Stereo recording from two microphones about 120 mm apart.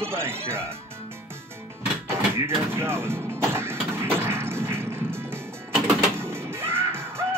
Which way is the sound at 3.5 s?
20° right (ahead or behind).